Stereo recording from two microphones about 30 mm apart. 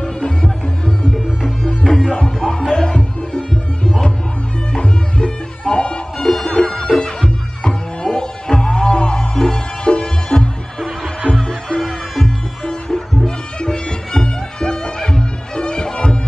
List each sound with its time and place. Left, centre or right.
0.0 s music: left
1.9 s music: centre
2.1 s music: left
4.7 s music: left
6.2 s music: centre
6.9 s music: left
11.4 s music: centre
13.6 s music: left